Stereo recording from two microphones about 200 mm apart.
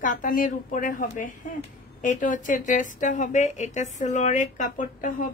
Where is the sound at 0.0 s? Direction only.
40° left (ahead or behind).